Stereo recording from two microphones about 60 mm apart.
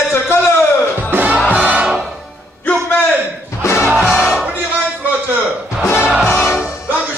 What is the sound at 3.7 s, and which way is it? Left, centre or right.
Music, centre.